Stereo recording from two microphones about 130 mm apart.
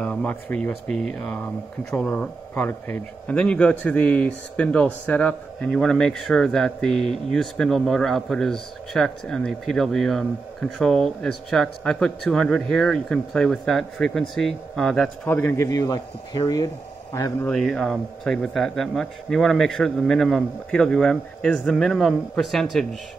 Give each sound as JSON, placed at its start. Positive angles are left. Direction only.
{"t": 0.0, "sound": "speech", "side_deg": 10}
{"t": 15.2, "sound": "speech", "side_deg": 15}
{"t": 17.5, "sound": "speech", "side_deg": 5}